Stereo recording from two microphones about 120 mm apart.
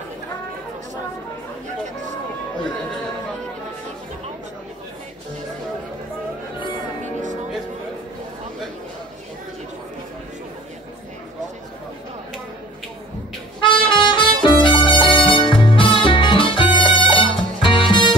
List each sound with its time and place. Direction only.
13.6 s music: 45° left (ahead or behind)